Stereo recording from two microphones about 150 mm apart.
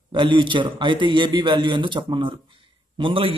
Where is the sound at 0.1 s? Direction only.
30° right (ahead or behind).